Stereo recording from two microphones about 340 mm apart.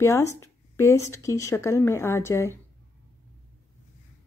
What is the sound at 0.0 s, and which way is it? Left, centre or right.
Speech, centre.